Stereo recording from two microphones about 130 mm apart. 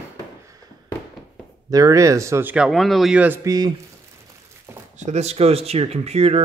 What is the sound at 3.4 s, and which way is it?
Speech, 30° right (ahead or behind).